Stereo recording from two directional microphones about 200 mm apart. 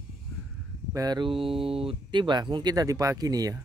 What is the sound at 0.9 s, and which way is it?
Speech, 20° right (ahead or behind).